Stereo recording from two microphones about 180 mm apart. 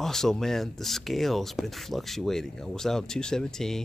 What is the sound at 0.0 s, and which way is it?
Speech, centre (ahead or behind).